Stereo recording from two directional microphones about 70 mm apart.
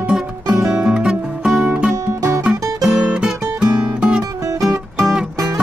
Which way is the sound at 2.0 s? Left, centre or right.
Right.